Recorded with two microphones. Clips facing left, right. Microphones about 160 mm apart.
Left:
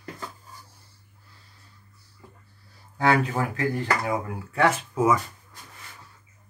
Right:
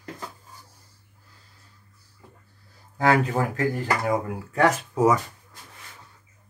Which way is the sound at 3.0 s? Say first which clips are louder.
Right 1 dB; 40° right (ahead or behind).